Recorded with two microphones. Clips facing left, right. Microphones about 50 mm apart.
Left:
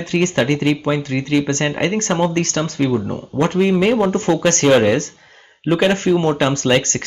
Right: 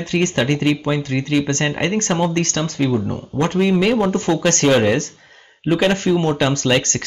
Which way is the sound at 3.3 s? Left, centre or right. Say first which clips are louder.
Left 1 dB; left.